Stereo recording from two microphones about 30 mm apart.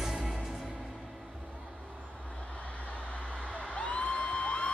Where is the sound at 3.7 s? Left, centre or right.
Left.